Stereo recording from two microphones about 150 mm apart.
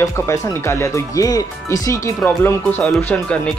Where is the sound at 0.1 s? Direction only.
20° left (ahead or behind).